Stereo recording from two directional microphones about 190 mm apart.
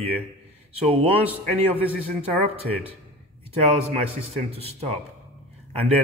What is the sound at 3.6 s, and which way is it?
A man's voice, 30° right (ahead or behind).